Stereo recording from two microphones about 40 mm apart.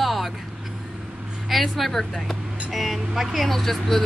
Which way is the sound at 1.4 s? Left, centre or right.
Centre.